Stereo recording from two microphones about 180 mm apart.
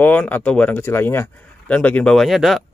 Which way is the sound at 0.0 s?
10° left (ahead or behind).